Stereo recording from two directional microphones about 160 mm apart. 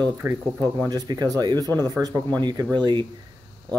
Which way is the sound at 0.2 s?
15° right (ahead or behind).